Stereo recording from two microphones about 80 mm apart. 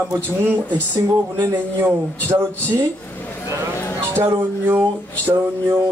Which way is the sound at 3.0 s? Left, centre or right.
Left.